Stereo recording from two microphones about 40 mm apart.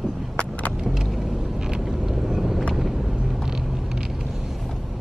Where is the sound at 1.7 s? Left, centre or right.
Centre.